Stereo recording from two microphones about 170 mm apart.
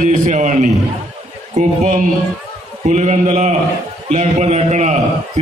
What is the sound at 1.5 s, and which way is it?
A man's voice, 45° right (ahead or behind).